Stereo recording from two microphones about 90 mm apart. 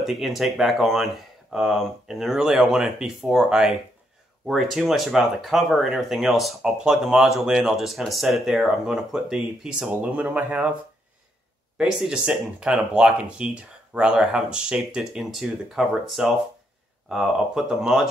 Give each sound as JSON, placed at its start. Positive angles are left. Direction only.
{"t": 0.0, "sound": "speech", "side_deg": 0}
{"t": 9.8, "sound": "speech", "side_deg": -15}
{"t": 11.8, "sound": "speech", "side_deg": -5}